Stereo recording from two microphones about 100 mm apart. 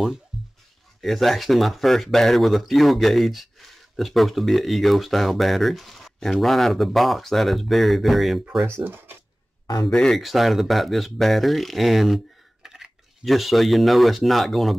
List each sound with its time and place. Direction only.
0.3 s music: 5° right (ahead or behind)
1.0 s speech: centre (ahead or behind)
8.8 s speech: 20° right (ahead or behind)
9.8 s speech: 5° left (ahead or behind)